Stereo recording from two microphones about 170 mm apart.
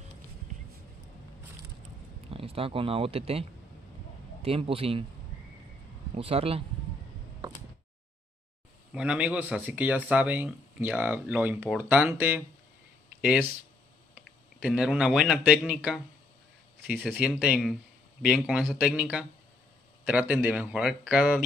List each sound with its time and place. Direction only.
2.3 s speech: 35° right (ahead or behind)
6.1 s speech: 35° right (ahead or behind)
8.9 s speech: 5° right (ahead or behind)
14.6 s speech: 5° right (ahead or behind)
17.0 s speech: centre (ahead or behind)
20.1 s speech: 10° right (ahead or behind)